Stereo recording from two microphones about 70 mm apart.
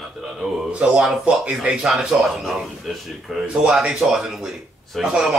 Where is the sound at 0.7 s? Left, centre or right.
Centre.